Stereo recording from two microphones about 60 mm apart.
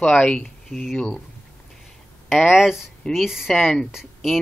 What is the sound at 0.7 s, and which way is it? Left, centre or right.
Speech, centre.